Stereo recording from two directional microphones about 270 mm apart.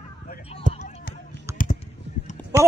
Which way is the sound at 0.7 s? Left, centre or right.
Left.